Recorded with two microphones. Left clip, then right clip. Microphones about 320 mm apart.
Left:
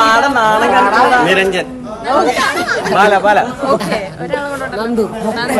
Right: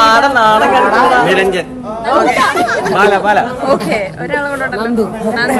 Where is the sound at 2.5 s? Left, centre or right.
Centre.